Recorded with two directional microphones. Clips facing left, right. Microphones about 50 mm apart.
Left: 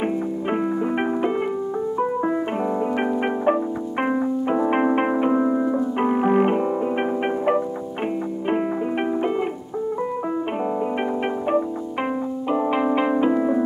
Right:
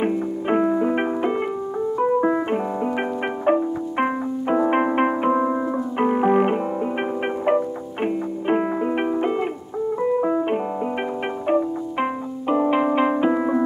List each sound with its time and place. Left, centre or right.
0.0 s music: centre
2.6 s music: centre
9.9 s music: centre
10.6 s music: centre